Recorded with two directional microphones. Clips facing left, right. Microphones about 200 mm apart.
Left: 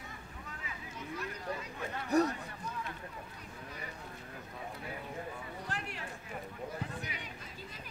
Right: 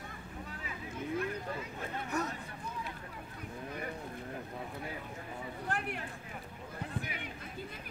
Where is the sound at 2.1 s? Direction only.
35° left (ahead or behind).